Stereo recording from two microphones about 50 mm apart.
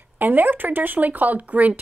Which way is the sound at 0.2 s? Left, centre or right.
Right.